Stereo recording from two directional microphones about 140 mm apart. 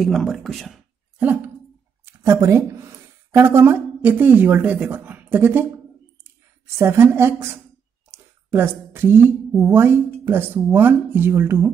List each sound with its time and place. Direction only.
0.0 s speech: centre (ahead or behind)
1.2 s speech: 10° right (ahead or behind)
6.8 s speech: 15° right (ahead or behind)
8.1 s a sound: 15° right (ahead or behind)
9.8 s speech: 15° right (ahead or behind)